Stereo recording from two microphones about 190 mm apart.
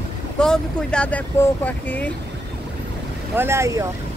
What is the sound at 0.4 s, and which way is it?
Speech, 5° left (ahead or behind).